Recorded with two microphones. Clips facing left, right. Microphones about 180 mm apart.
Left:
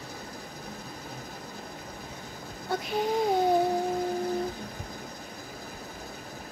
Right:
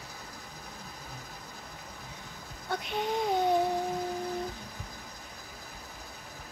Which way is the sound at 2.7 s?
Centre (ahead or behind).